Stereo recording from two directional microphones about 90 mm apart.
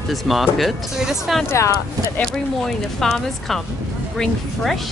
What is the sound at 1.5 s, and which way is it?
Speech, 35° left (ahead or behind).